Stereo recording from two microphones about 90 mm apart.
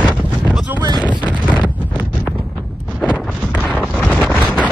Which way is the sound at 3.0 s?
10° left (ahead or behind).